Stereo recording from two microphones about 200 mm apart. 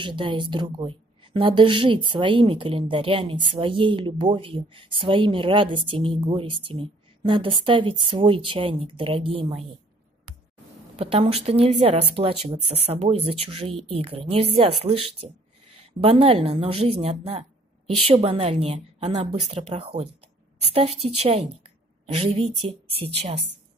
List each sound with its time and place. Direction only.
0.0 s a woman's voice: 25° right (ahead or behind)
11.0 s a woman's voice: 30° right (ahead or behind)